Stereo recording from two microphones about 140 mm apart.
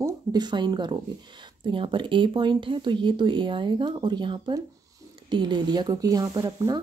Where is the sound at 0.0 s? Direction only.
30° right (ahead or behind).